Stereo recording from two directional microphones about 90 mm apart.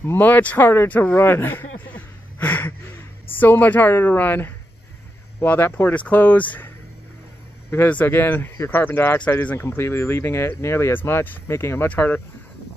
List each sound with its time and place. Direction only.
0.0 s speech: 25° left (ahead or behind)
7.7 s speech: 20° left (ahead or behind)